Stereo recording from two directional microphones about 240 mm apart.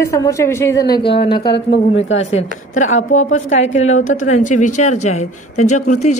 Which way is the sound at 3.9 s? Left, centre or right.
Left.